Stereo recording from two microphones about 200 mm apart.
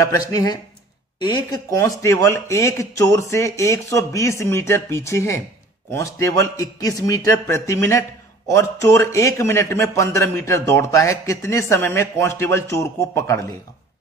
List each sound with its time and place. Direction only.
0.0 s a man's voice: 15° left (ahead or behind)